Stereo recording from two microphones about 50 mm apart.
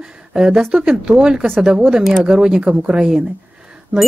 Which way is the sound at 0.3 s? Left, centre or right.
Centre.